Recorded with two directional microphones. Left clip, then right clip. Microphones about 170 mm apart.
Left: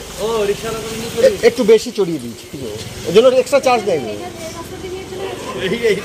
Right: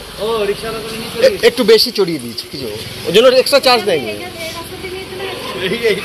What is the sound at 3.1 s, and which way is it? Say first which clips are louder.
Speech: right 2 dB; 10° right (ahead or behind).